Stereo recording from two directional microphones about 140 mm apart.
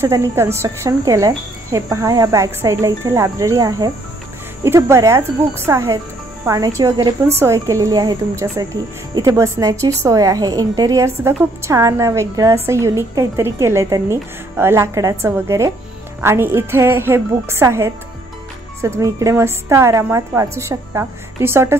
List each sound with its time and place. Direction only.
0.0 s a woman's voice: 20° right (ahead or behind)